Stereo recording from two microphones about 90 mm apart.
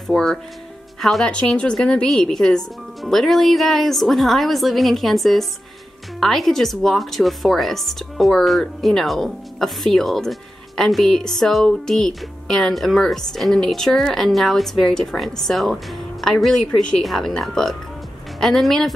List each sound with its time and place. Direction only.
0.1 s speech: 5° left (ahead or behind)